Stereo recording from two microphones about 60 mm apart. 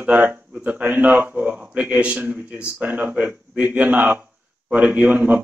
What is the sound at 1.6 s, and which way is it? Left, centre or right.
Speech, right.